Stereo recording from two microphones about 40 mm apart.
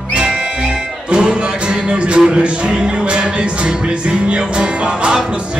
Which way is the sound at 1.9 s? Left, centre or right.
Right.